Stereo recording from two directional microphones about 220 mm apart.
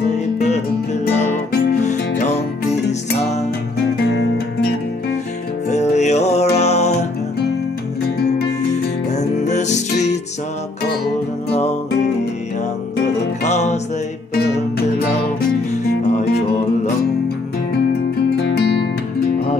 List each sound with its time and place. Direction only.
1.7 s music: 35° left (ahead or behind)
5.7 s music: 30° left (ahead or behind)
9.1 s music: 30° left (ahead or behind)
13.4 s music: 30° left (ahead or behind)
18.6 s music: 50° left (ahead or behind)